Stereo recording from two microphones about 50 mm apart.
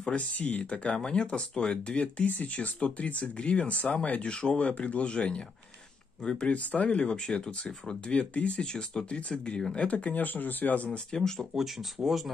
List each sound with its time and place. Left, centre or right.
0.1 s speech: left
2.2 s speech: left
10.9 s speech: centre
11.3 s speech: centre